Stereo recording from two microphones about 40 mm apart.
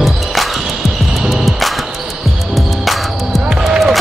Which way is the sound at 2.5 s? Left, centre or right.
Centre.